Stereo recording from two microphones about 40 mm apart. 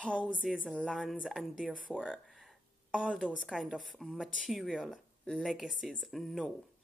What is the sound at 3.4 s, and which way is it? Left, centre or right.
Speech, centre.